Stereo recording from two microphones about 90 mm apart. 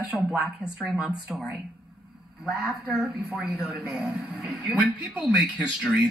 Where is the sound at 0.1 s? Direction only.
5° right (ahead or behind).